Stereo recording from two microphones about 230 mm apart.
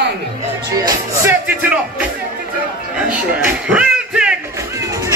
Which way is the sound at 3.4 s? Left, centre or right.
Centre.